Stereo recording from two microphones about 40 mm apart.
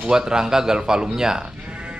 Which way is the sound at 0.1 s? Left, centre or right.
Centre.